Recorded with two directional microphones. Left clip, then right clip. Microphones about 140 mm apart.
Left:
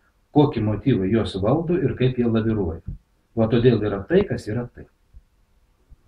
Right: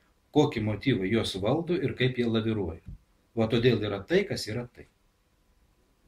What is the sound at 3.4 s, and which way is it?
Speech, 70° right (ahead or behind).